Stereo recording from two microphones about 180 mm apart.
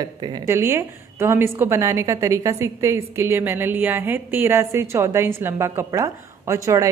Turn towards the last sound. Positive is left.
turn(degrees=-15)  # may be behind; listen again after turning